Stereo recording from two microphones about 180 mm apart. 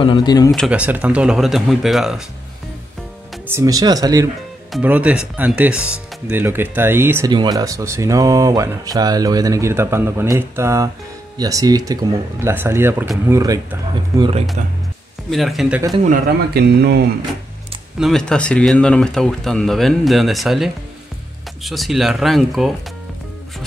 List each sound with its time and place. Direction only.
0.0 s speech: 25° left (ahead or behind)
0.5 s speech: 5° right (ahead or behind)
3.4 s speech: 15° right (ahead or behind)
4.7 s speech: 10° right (ahead or behind)
7.2 s speech: 20° right (ahead or behind)
15.2 s speech: centre (ahead or behind)
16.5 s speech: 65° right (ahead or behind)
17.9 s speech: centre (ahead or behind)